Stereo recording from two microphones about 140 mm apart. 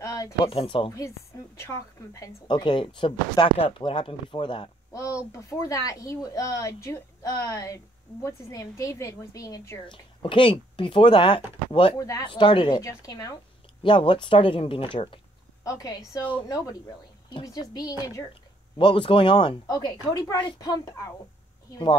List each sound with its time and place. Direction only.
0.0 s a sound: 25° left (ahead or behind)
0.5 s speech: 40° left (ahead or behind)
1.6 s speech: 20° left (ahead or behind)
2.4 s speech: 35° left (ahead or behind)
4.9 s speech: 25° left (ahead or behind)
9.8 s speech: 35° left (ahead or behind)
12.0 s speech: 25° left (ahead or behind)
12.3 s speech: 35° left (ahead or behind)
15.6 s speech: 25° left (ahead or behind)